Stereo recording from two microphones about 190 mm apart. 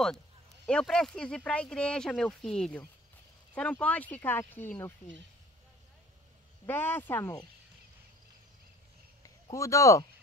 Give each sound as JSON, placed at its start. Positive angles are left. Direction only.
{"t": 0.7, "sound": "speech", "side_deg": 5}
{"t": 6.6, "sound": "speech", "side_deg": 10}
{"t": 9.2, "sound": "speech", "side_deg": 15}